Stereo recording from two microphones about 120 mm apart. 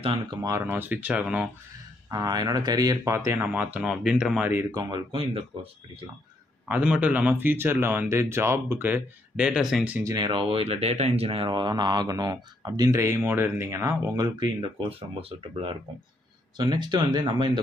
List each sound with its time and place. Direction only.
0.3 s speech: 30° right (ahead or behind); by 1.5 s 10° right (ahead or behind)
2.0 s speech: 30° right (ahead or behind); by 4.6 s 10° right (ahead or behind)
4.6 s speech: 30° right (ahead or behind)
5.1 s speech: 50° right (ahead or behind)
6.7 s speech: 10° right (ahead or behind)
10.0 s speech: 35° right (ahead or behind); by 13.7 s 15° right (ahead or behind)
13.7 s speech: 25° right (ahead or behind); by 15.8 s 50° right (ahead or behind)
16.5 s speech: 40° right (ahead or behind)